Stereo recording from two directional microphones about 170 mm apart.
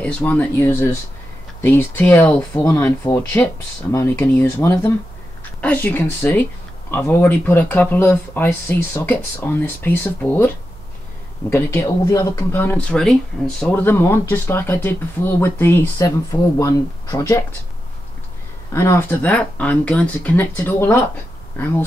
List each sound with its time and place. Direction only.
0.0 s speech: 10° left (ahead or behind)
11.5 s speech: 15° left (ahead or behind)
18.7 s speech: 15° left (ahead or behind)